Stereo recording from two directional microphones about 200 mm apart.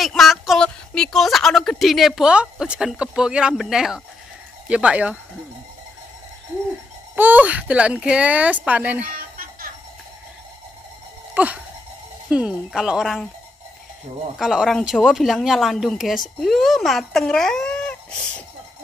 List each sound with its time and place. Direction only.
0.0 s a woman's voice: centre (ahead or behind)
7.2 s speech: 10° right (ahead or behind)
9.1 s music: 45° right (ahead or behind)
11.3 s a woman's voice: 5° right (ahead or behind)
14.4 s a woman's voice: centre (ahead or behind)